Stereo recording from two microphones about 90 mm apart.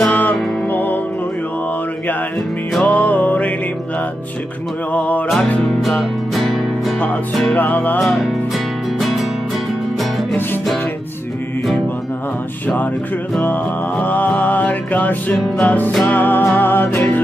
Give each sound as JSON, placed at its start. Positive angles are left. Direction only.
{"t": 0.1, "sound": "music", "side_deg": 20}
{"t": 2.8, "sound": "music", "side_deg": 15}
{"t": 4.9, "sound": "music", "side_deg": 15}
{"t": 5.7, "sound": "music", "side_deg": 0}
{"t": 7.5, "sound": "music", "side_deg": 20}
{"t": 8.0, "sound": "music", "side_deg": 5}
{"t": 13.4, "sound": "music", "side_deg": 20}